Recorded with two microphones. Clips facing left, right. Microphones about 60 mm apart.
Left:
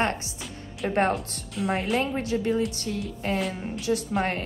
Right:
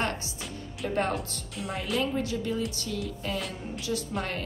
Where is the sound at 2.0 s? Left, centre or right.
Left.